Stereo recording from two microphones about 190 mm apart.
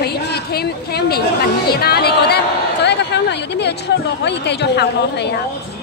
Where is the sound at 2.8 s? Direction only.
65° left (ahead or behind).